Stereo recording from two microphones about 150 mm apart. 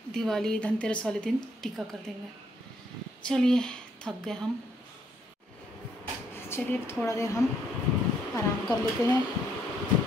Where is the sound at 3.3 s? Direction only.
5° left (ahead or behind).